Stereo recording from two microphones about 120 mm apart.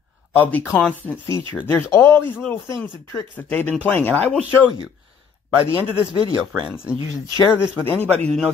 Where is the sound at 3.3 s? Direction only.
15° left (ahead or behind).